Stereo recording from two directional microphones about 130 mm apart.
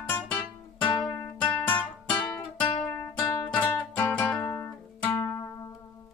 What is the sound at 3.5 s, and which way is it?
Music, 10° left (ahead or behind).